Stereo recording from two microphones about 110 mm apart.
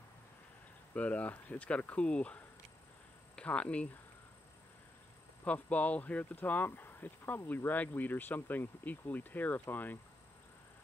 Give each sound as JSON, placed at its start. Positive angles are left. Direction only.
{"t": 0.9, "sound": "speech", "side_deg": 15}
{"t": 5.4, "sound": "speech", "side_deg": 15}